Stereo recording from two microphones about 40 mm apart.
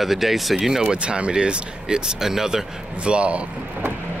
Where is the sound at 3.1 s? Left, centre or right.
Right.